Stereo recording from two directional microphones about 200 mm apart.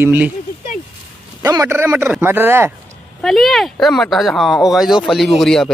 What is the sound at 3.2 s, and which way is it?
Speech, centre (ahead or behind).